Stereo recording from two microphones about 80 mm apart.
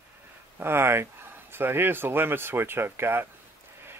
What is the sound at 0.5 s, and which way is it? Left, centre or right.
Speech, right.